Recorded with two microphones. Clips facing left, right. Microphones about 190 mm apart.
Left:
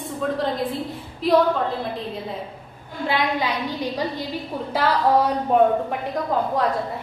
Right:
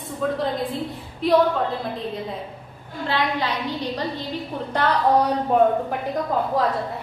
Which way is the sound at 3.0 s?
15° left (ahead or behind).